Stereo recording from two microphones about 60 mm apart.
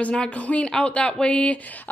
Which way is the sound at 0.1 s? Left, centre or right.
Centre.